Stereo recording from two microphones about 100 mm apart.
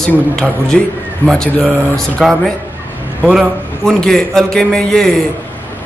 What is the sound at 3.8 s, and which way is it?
A man's voice, 5° left (ahead or behind).